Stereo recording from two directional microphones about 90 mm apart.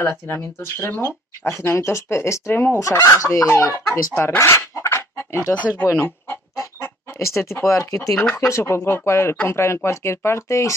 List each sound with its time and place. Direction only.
0.3 s speech: 30° left (ahead or behind)
2.8 s chicken: 35° left (ahead or behind)
5.5 s speech: 15° left (ahead or behind)
5.9 s speech: 30° left (ahead or behind)
6.6 s chicken: 30° left (ahead or behind)
8.4 s speech: 30° left (ahead or behind)
9.8 s chicken: 30° left (ahead or behind)